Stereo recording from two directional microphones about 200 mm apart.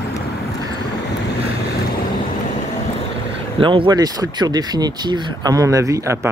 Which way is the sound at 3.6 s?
25° right (ahead or behind).